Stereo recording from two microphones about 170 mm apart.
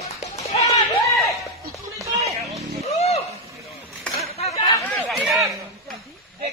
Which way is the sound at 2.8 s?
40° left (ahead or behind).